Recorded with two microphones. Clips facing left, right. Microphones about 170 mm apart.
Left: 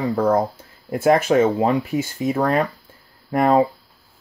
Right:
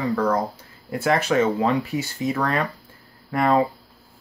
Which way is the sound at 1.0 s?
45° left (ahead or behind).